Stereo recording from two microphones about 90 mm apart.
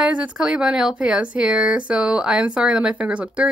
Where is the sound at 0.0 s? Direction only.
10° right (ahead or behind).